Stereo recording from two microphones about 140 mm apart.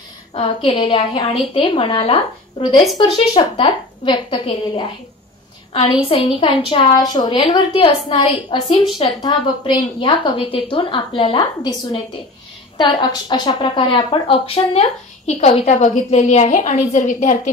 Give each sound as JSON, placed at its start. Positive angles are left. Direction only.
{"t": 0.3, "sound": "a woman's voice", "side_deg": 45}
{"t": 3.0, "sound": "a woman's voice", "side_deg": 35}